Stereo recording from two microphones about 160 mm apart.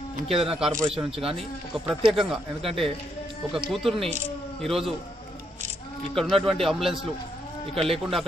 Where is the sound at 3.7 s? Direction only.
Centre (ahead or behind).